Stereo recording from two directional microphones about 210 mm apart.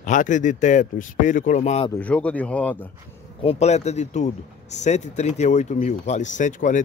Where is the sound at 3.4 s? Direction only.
30° left (ahead or behind).